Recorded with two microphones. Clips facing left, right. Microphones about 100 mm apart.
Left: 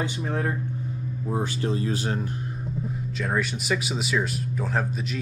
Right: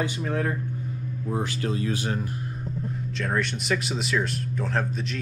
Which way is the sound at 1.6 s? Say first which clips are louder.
Left 1 dB; 30° left (ahead or behind).